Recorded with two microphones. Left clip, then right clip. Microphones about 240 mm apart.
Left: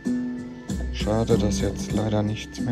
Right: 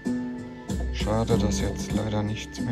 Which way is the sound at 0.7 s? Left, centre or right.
Centre.